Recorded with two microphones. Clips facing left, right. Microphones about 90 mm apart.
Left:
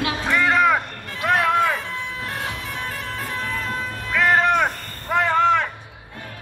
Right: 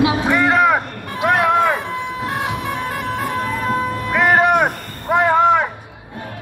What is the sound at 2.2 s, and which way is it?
Vehicle, 30° right (ahead or behind).